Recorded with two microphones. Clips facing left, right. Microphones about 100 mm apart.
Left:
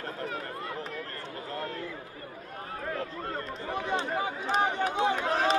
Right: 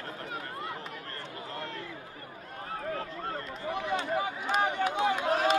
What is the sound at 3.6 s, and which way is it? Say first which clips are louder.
Run: even; 35° left (ahead or behind).